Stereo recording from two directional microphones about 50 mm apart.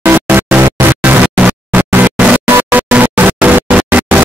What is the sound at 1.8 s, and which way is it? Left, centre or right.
Music, right.